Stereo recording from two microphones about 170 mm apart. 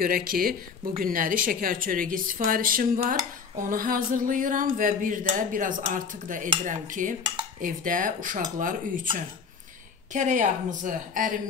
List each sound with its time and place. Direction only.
0.0 s speech: 55° right (ahead or behind)
10.1 s speech: 45° right (ahead or behind)